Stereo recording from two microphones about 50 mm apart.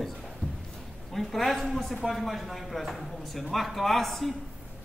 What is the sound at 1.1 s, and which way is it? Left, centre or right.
Speech, centre.